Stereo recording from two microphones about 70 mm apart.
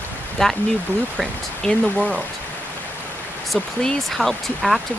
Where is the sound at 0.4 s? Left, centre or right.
Centre.